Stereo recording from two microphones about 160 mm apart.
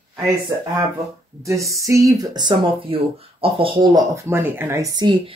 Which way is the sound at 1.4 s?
20° right (ahead or behind).